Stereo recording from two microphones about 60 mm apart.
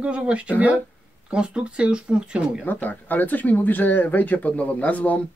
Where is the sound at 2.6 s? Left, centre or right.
Left.